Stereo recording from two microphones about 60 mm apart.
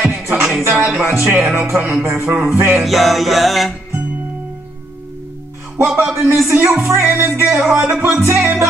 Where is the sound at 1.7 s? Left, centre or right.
Centre.